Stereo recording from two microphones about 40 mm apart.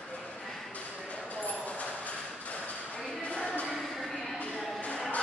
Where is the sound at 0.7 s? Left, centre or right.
Left.